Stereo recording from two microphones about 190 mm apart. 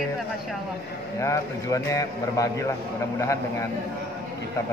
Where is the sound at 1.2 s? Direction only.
15° left (ahead or behind).